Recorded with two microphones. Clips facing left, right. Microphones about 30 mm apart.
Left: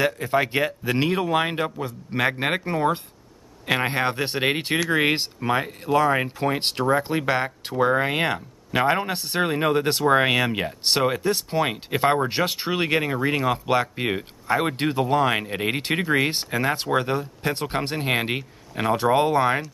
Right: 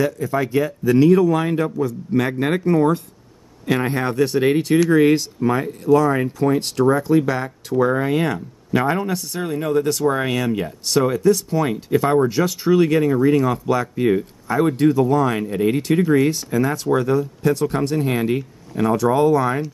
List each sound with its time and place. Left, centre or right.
0.0 s speech: left